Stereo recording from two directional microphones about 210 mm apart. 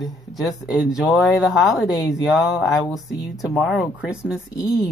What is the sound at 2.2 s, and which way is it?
Speech, 5° right (ahead or behind).